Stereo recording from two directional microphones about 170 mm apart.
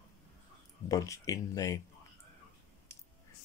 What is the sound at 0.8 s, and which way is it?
Speech, 20° left (ahead or behind).